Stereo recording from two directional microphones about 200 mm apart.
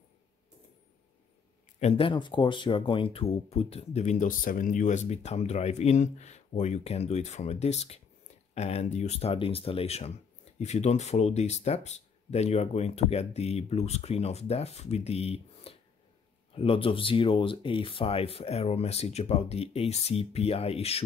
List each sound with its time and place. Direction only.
1.8 s speech: 30° left (ahead or behind)